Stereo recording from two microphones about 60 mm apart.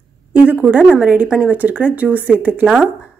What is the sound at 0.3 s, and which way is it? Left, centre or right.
Speech, right.